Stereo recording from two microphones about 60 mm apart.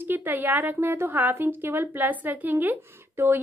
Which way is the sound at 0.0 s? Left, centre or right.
Right.